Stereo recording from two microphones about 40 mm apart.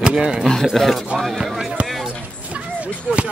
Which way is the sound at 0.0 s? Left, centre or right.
Right.